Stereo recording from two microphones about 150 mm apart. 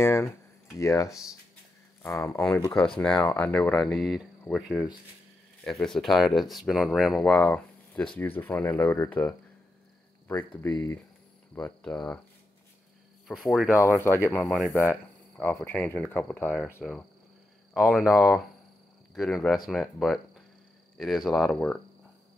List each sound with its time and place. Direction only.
0.0 s speech: 15° left (ahead or behind)
2.7 s speech: 5° left (ahead or behind)
13.3 s speech: 5° right (ahead or behind)
13.7 s speech: 15° left (ahead or behind)
14.4 s speech: 5° left (ahead or behind)
14.7 s speech: 15° left (ahead or behind)
17.7 s speech: 5° right (ahead or behind)